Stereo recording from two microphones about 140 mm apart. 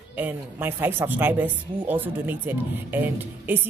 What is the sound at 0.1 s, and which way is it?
A woman's voice, 15° right (ahead or behind).